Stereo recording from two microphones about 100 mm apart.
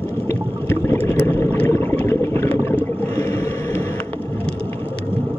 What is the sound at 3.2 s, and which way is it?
Boat, 35° left (ahead or behind).